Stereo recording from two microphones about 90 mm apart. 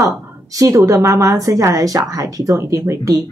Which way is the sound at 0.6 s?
35° right (ahead or behind).